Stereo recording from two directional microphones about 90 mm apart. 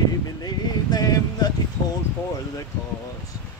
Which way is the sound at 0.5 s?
45° left (ahead or behind).